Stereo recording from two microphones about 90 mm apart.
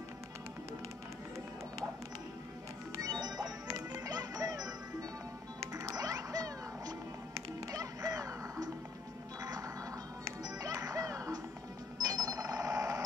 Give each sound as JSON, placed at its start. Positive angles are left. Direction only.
{"t": 3.0, "sound": "music", "side_deg": -45}
{"t": 12.0, "sound": "ringtone", "side_deg": -45}